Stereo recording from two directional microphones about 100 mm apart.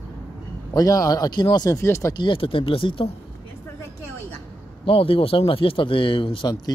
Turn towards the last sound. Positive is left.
turn(degrees=60)  # may be behind; listen again after turning